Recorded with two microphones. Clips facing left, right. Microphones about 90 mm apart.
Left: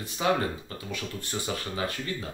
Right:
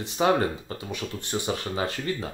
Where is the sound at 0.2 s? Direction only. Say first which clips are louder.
Right 4 dB; 35° right (ahead or behind).